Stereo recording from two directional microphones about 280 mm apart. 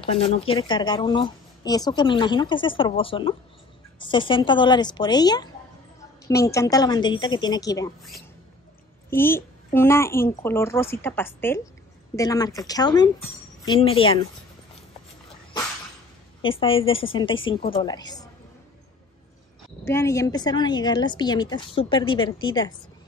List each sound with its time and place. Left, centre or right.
0.0 s speech: centre
9.1 s a woman's voice: centre
16.4 s a woman's voice: centre
19.8 s speech: centre